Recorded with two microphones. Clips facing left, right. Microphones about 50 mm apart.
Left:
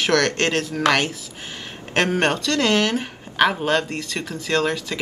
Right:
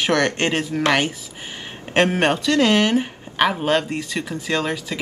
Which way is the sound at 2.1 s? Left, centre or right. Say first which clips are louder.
Right 2 dB; centre.